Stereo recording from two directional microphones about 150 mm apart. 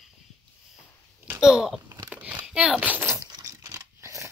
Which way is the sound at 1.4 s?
5° right (ahead or behind).